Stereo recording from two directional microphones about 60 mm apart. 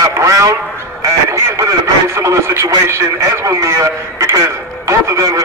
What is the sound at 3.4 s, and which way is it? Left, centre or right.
A man's voice, right.